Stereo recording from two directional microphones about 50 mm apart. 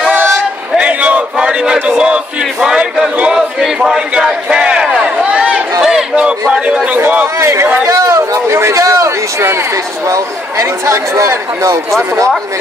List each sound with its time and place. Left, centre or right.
0.1 s a sound: right
0.7 s a sound: right
2.6 s speech: centre
4.8 s run: centre
5.8 s a sound: centre
6.5 s a man's voice: centre
7.3 s chatter: right
7.8 s speech: right
10.6 s speech: right